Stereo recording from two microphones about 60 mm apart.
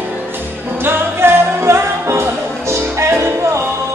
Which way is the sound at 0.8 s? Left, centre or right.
Right.